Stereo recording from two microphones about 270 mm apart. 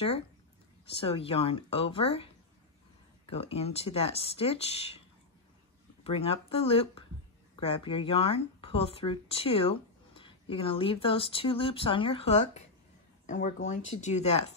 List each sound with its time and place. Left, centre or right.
0.9 s speech: left
3.3 s speech: left
6.0 s speech: left